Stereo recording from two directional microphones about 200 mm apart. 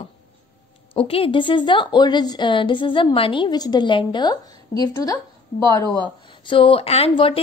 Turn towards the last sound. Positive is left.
turn(degrees=30)  # may be behind; listen again after turning